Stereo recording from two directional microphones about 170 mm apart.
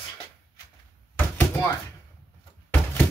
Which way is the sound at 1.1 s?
10° left (ahead or behind).